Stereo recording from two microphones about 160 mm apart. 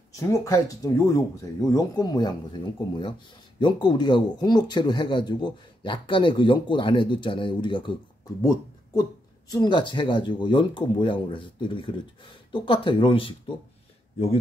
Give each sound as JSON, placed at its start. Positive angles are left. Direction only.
{"t": 0.1, "sound": "speech", "side_deg": 20}
{"t": 9.5, "sound": "speech", "side_deg": 25}